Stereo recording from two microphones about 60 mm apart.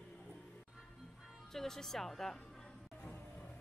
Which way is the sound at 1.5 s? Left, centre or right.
Centre.